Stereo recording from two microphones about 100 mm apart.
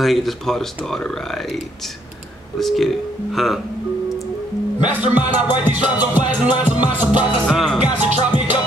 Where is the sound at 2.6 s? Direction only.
Centre (ahead or behind).